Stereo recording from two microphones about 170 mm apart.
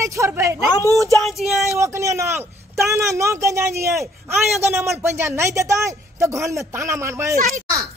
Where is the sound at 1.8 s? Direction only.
15° right (ahead or behind).